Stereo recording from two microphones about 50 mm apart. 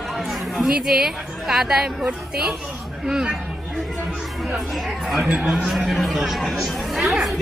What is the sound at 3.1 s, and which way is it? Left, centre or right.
Speech, centre.